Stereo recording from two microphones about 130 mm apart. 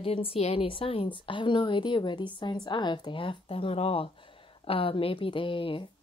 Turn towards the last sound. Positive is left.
turn(degrees=40)  # may be behind; listen again after turning